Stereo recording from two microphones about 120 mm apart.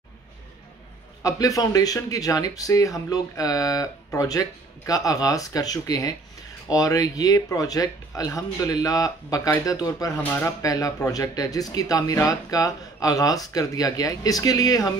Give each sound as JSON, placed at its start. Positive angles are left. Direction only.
{"t": 1.2, "sound": "speech", "side_deg": 30}